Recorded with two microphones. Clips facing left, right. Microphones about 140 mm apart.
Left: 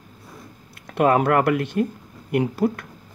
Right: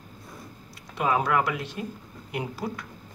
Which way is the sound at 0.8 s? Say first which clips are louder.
Left 7 dB; 60° left (ahead or behind).